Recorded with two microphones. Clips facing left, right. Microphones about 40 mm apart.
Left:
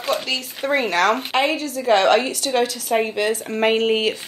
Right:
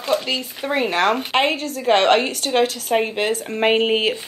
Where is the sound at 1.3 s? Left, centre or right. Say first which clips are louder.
Right 1 dB; right.